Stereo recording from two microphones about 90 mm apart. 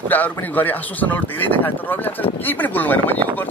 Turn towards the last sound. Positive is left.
turn(degrees=20)  # may be behind; listen again after turning